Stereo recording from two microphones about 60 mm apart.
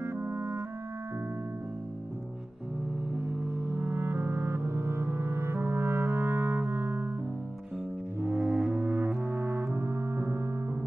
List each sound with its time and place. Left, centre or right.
0.0 s music: right
3.5 s music: right
8.3 s music: centre
8.7 s music: right
9.2 s brass instrument: right
9.7 s music: right